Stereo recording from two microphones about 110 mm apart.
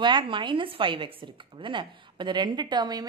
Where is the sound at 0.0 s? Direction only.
45° right (ahead or behind).